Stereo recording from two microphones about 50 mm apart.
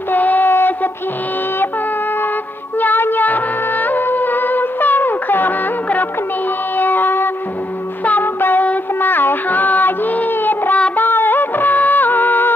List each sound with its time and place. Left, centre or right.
0.1 s child singing: left
2.8 s music: left
6.8 s music: left
8.0 s music: left
8.4 s child singing: left
11.0 s music: left